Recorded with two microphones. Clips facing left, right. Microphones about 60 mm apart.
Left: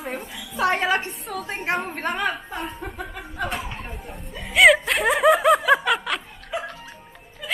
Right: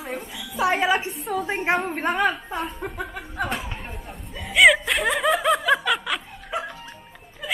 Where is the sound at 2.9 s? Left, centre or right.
Right.